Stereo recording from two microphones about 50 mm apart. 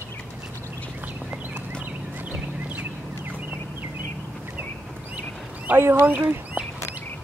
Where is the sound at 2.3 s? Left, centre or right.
Right.